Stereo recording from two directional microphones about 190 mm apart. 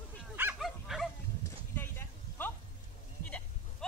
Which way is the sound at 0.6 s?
Centre (ahead or behind).